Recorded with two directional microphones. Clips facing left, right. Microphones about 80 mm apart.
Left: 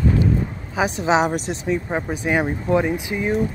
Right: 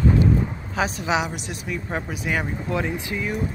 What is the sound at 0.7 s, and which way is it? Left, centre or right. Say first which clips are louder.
Speech: left 5 dB; centre.